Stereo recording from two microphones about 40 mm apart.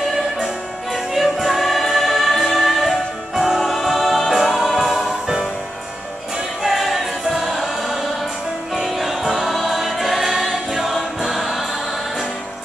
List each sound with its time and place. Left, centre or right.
0.9 s music: centre
6.6 s choir: centre
8.7 s music: centre
9.3 s choir: centre
11.1 s music: centre